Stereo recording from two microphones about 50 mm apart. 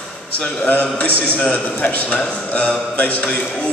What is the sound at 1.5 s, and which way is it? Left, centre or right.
A man's voice, left.